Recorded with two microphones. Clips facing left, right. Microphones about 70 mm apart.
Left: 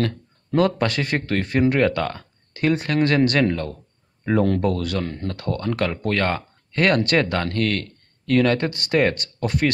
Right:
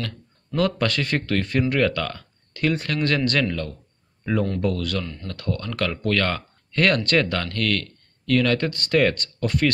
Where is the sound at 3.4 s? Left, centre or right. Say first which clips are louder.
Left 4 dB; left.